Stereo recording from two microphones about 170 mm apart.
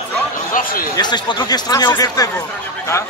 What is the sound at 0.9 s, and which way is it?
Speech, 25° left (ahead or behind).